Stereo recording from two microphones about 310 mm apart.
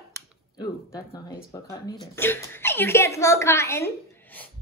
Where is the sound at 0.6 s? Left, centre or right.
Centre.